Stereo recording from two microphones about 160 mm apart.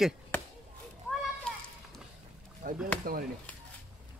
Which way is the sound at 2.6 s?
60° right (ahead or behind).